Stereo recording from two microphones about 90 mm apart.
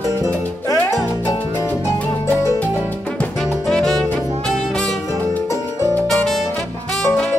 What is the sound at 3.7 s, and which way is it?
Saxophone, 5° left (ahead or behind).